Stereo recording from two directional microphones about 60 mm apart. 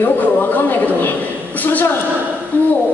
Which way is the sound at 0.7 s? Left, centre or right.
Left.